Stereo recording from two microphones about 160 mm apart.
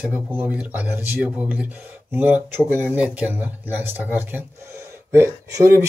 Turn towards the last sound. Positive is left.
turn(degrees=-15)  # may be behind; listen again after turning